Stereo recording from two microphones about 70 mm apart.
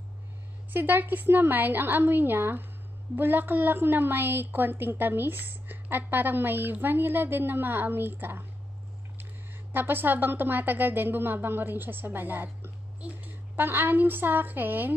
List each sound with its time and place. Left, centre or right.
0.7 s a woman's voice: right